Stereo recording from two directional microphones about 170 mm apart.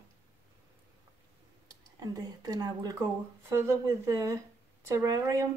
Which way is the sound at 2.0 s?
20° right (ahead or behind).